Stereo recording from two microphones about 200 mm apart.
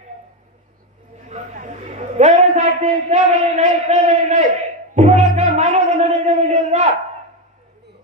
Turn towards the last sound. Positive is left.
turn(degrees=-35)  # may be behind; listen again after turning